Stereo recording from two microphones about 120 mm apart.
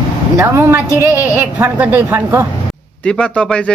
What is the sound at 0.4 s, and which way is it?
A woman's voice, 25° right (ahead or behind).